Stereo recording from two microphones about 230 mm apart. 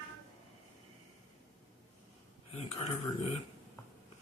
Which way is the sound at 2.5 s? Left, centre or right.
Left.